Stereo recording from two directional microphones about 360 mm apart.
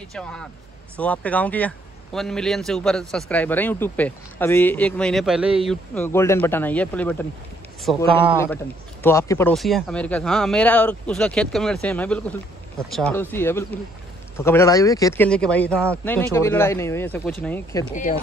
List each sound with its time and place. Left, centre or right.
0.1 s a man's voice: centre
17.9 s speech: left